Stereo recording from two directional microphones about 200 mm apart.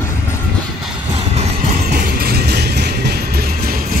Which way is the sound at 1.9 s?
50° right (ahead or behind).